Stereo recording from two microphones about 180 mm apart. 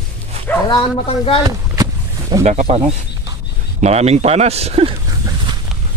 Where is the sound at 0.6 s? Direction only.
30° left (ahead or behind).